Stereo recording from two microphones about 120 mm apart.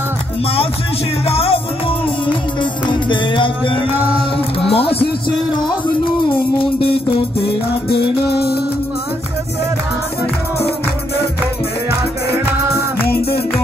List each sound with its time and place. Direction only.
1.2 s music: 55° left (ahead or behind)